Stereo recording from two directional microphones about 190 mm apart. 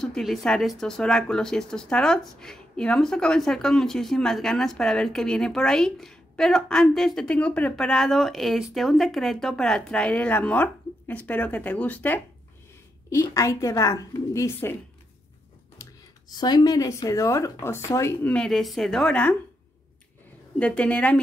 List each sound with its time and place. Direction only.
0.0 s speech: centre (ahead or behind)
16.3 s speech: 20° left (ahead or behind); by 19.3 s 5° left (ahead or behind)
20.5 s speech: 5° left (ahead or behind)